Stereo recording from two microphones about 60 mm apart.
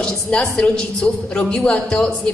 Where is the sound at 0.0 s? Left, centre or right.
Centre.